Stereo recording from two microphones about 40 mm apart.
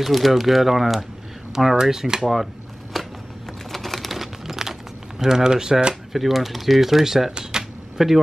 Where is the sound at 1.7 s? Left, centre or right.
Centre.